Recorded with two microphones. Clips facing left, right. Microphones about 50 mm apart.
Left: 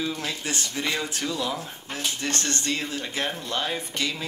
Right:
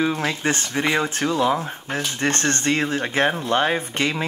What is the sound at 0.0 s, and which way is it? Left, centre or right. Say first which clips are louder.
Speech: right 8 dB; right.